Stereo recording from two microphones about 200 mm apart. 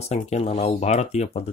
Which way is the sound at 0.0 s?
35° left (ahead or behind).